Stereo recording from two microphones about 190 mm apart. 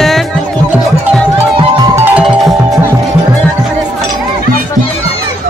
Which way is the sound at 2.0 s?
5° right (ahead or behind).